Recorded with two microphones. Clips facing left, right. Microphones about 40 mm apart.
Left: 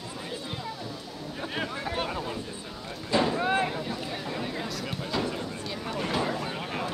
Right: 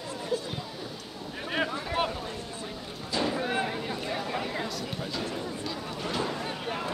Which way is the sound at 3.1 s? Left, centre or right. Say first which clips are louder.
Left 4 dB; left.